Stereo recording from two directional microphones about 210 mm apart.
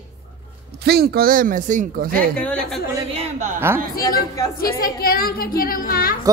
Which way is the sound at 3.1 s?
30° right (ahead or behind).